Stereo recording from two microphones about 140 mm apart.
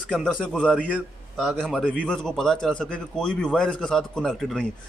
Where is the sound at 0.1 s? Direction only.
5° left (ahead or behind).